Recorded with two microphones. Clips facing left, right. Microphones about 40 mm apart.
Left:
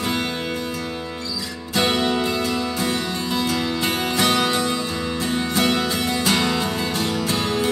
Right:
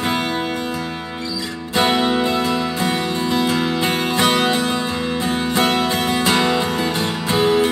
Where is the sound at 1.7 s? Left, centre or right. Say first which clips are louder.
Right 3 dB; centre.